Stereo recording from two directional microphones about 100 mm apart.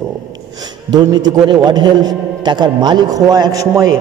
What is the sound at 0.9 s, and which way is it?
A man's voice, 45° right (ahead or behind).